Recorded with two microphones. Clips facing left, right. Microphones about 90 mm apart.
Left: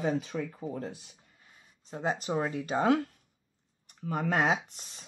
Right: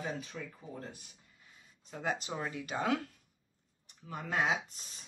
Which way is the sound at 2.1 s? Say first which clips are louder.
Left 8 dB; 45° left (ahead or behind).